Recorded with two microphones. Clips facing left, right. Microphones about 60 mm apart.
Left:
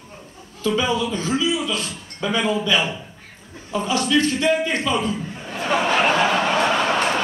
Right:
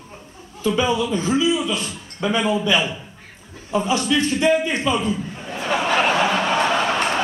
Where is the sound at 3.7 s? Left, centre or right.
Right.